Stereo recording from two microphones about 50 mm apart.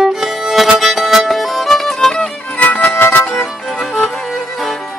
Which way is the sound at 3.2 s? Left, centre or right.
Centre.